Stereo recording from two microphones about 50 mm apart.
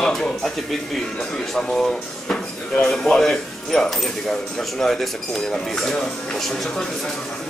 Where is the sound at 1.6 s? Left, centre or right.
Centre.